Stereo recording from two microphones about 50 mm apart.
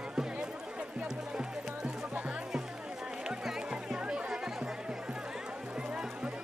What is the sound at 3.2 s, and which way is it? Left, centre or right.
Music, centre.